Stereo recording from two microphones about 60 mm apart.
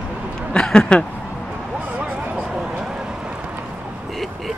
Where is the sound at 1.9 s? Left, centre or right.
Centre.